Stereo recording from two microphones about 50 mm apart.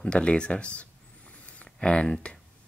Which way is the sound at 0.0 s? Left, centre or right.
Centre.